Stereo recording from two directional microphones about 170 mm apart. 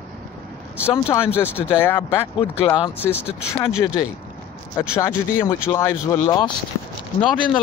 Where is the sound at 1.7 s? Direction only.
15° left (ahead or behind).